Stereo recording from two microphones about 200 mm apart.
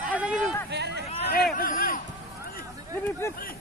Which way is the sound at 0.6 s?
55° right (ahead or behind).